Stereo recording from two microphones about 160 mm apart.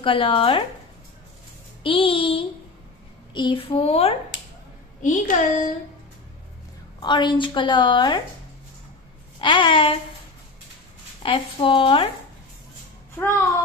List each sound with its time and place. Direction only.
0.0 s speech: 35° left (ahead or behind)
1.8 s speech: 35° left (ahead or behind)
5.0 s a woman's voice: 50° left (ahead or behind)
7.0 s a woman's voice: 30° left (ahead or behind)
9.4 s speech: 30° left (ahead or behind)
11.2 s speech: 35° left (ahead or behind)